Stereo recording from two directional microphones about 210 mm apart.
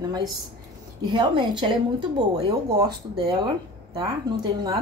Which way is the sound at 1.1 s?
20° right (ahead or behind).